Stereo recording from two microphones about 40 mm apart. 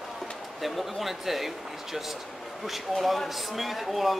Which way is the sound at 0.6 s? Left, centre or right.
Centre.